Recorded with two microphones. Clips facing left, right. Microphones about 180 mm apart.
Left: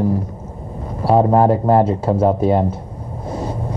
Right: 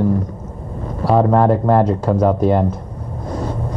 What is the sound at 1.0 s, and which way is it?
Speech, 25° left (ahead or behind).